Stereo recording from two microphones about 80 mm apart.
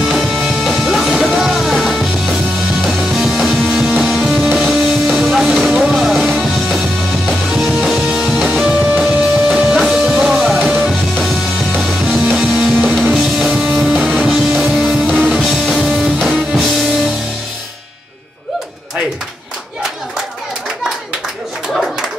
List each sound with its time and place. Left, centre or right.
0.0 s music: centre
4.2 s music: centre
8.6 s music: centre
12.1 s music: centre
13.5 s music: centre
15.0 s music: centre